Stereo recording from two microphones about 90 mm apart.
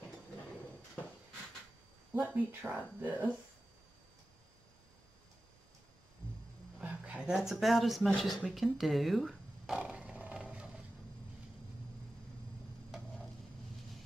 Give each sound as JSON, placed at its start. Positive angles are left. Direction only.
{"t": 2.3, "sound": "speech", "side_deg": -20}
{"t": 6.8, "sound": "a sound", "side_deg": -15}
{"t": 7.6, "sound": "speech", "side_deg": 0}
{"t": 9.8, "sound": "roar", "side_deg": -15}